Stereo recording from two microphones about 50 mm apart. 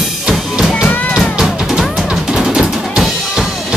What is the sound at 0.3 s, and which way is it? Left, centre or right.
Music, centre.